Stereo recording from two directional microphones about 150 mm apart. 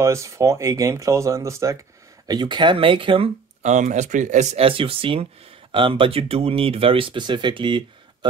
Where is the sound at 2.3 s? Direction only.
30° right (ahead or behind).